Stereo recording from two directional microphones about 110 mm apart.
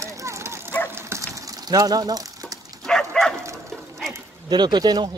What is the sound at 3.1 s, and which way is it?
Bow-wow, 5° left (ahead or behind).